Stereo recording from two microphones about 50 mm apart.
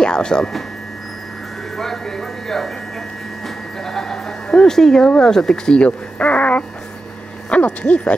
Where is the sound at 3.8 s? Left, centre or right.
Centre.